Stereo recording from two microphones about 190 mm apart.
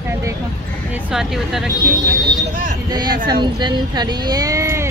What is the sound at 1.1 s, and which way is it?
Speech, 5° right (ahead or behind).